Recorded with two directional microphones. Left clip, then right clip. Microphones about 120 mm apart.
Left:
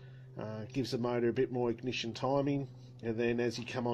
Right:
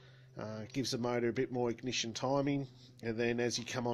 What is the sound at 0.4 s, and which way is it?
Speech, 35° right (ahead or behind).